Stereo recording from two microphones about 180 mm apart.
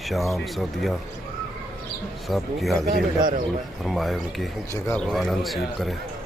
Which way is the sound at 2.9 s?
55° right (ahead or behind).